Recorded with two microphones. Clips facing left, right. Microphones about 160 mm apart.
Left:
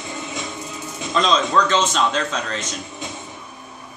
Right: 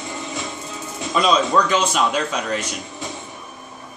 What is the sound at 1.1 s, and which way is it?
A man's voice, 10° right (ahead or behind).